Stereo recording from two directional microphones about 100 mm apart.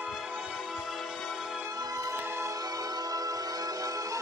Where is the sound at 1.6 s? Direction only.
35° right (ahead or behind).